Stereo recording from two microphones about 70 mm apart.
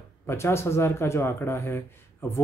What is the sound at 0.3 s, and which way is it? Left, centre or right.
Speech, left.